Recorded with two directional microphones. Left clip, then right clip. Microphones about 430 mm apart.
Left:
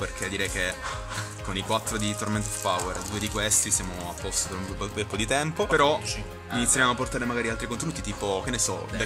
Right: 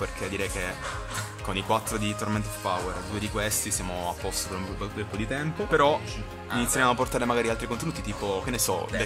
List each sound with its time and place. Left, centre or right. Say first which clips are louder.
0.0 s speech: left 1 dB; centre
5.7 s speech: right 1 dB; centre